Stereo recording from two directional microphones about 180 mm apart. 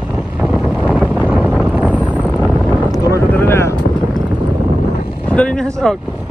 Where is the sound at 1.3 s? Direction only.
Centre (ahead or behind).